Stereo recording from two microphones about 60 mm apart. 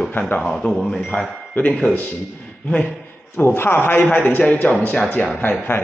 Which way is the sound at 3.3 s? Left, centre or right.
Left.